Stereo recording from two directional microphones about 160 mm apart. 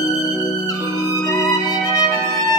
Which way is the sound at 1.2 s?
20° left (ahead or behind).